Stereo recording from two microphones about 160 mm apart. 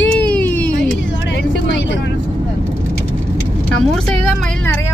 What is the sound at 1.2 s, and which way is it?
Speech, 90° left.